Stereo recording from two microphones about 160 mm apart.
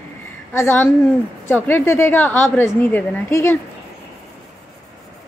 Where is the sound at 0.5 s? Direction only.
10° left (ahead or behind).